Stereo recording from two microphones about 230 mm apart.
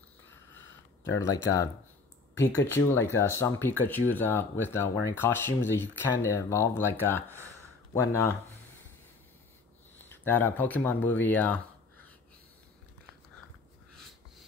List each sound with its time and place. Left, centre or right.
0.3 s a sound: centre
2.3 s speech: centre
10.0 s speech: centre